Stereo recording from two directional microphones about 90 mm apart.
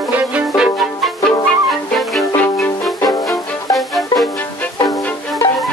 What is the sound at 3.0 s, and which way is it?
Music, 45° left (ahead or behind).